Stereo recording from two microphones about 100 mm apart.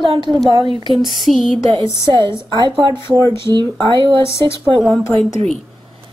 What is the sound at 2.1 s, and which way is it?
Speech, 50° right (ahead or behind).